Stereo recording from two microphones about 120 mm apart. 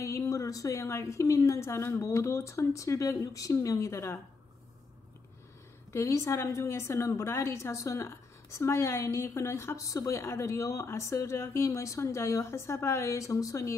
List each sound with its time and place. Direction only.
0.0 s a woman's voice: 25° left (ahead or behind)
5.9 s a woman's voice: 25° left (ahead or behind)